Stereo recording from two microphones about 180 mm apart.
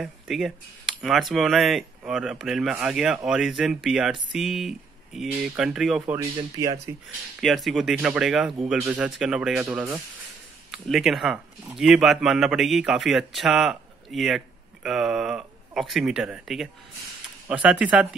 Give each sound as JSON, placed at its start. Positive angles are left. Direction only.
{"t": 0.0, "sound": "speech", "side_deg": 0}
{"t": 6.1, "sound": "speech", "side_deg": -20}
{"t": 7.3, "sound": "speech", "side_deg": 0}